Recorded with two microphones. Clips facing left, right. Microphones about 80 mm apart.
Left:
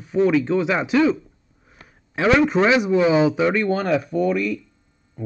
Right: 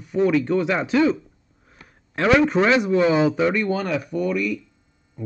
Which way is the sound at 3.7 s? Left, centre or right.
Left.